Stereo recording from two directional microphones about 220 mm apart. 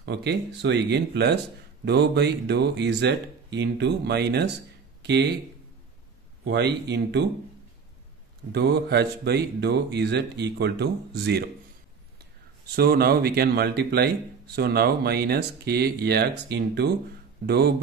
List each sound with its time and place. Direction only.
0.0 s speech: 50° right (ahead or behind)
6.4 s speech: 50° right (ahead or behind)
8.5 s speech: 50° right (ahead or behind)
12.7 s speech: 45° right (ahead or behind)